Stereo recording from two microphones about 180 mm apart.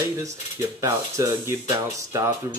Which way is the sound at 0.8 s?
15° right (ahead or behind).